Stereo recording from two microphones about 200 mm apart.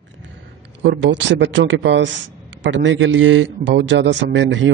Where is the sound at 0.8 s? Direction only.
65° right (ahead or behind).